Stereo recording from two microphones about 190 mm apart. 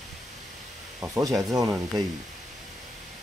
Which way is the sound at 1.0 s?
15° right (ahead or behind).